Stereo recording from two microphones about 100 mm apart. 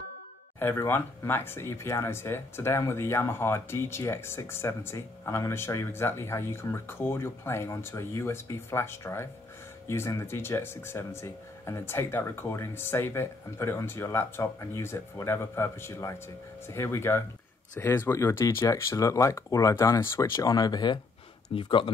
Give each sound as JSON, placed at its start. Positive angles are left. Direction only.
{"t": 0.6, "sound": "speech", "side_deg": 20}
{"t": 21.5, "sound": "speech", "side_deg": 60}